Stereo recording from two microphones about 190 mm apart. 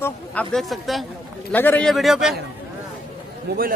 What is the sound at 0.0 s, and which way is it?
Speech, 5° left (ahead or behind).